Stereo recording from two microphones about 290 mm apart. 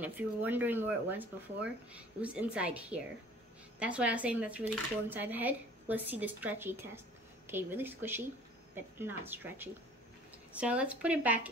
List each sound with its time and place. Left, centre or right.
0.0 s speech: centre